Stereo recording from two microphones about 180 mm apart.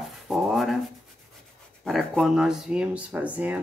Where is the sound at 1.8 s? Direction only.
Centre (ahead or behind).